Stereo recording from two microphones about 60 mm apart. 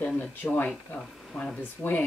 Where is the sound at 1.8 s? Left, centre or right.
Left.